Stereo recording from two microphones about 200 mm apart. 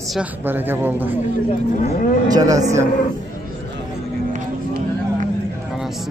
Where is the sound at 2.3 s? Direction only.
15° right (ahead or behind).